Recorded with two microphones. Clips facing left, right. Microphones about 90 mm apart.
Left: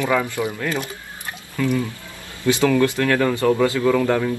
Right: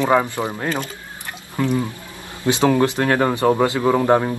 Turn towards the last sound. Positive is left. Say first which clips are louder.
# right 2 dB
turn(degrees=-30)  # may be behind; listen again after turning